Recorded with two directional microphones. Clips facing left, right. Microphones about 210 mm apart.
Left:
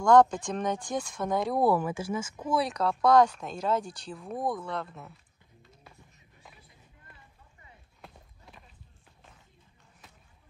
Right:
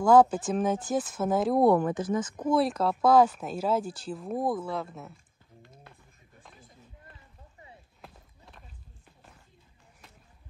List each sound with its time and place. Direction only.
0.0 s speech: 5° right (ahead or behind)
8.0 s run: centre (ahead or behind)